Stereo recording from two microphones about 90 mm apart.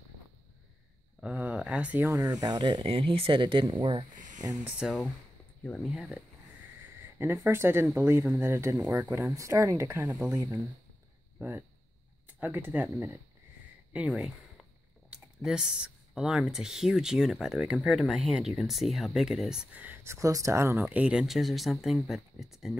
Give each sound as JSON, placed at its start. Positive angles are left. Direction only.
{"t": 1.2, "sound": "speech", "side_deg": -15}
{"t": 2.0, "sound": "speech", "side_deg": -40}
{"t": 2.8, "sound": "speech", "side_deg": -90}
{"t": 3.7, "sound": "speech", "side_deg": -90}
{"t": 4.8, "sound": "speech", "side_deg": 5}
{"t": 7.2, "sound": "speech", "side_deg": -25}
{"t": 9.2, "sound": "speech", "side_deg": -35}
{"t": 12.4, "sound": "speech", "side_deg": -20}
{"t": 13.9, "sound": "speech", "side_deg": -10}
{"t": 19.7, "sound": "speech", "side_deg": -20}
{"t": 20.0, "sound": "speech", "side_deg": -30}
{"t": 20.9, "sound": "speech", "side_deg": -15}